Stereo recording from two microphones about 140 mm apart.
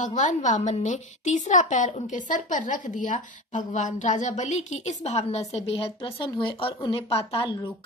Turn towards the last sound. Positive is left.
turn(degrees=35)  # may be behind; listen again after turning